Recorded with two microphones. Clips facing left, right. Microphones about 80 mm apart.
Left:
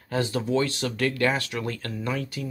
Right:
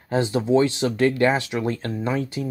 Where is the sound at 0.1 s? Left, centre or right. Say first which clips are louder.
Right 6 dB; right.